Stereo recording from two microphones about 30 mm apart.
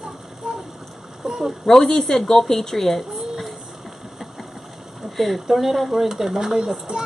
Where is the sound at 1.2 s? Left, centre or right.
Centre.